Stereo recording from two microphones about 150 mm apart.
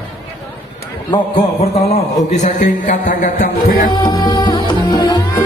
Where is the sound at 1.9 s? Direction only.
55° left (ahead or behind).